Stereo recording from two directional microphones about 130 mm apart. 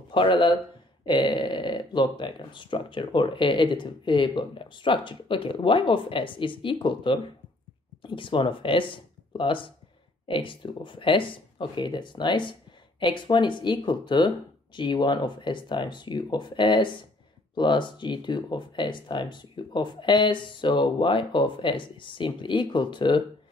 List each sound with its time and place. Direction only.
0.1 s speech: 40° left (ahead or behind)